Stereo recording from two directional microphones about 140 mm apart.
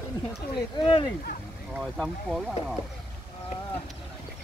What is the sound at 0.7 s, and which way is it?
Speech, 35° left (ahead or behind).